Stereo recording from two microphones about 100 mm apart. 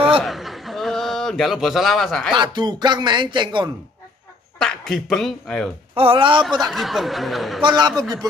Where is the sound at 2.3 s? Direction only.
50° right (ahead or behind).